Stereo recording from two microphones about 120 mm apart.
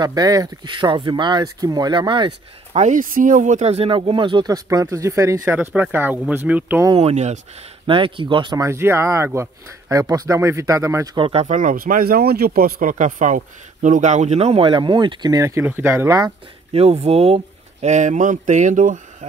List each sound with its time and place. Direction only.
0.0 s speech: 35° right (ahead or behind)
2.7 s speech: 85° right; by 4.6 s 40° right (ahead or behind)
4.6 s speech: 25° right (ahead or behind)
7.0 s speech: 65° right (ahead or behind)
7.8 s speech: 45° right (ahead or behind)
8.6 s speech: 20° right (ahead or behind)
11.1 s speech: 55° right (ahead or behind); by 11.7 s 80° right
12.8 s speech: 90° right; by 16.2 s 20° right (ahead or behind)
16.7 s speech: 60° right (ahead or behind)
17.8 s speech: 85° right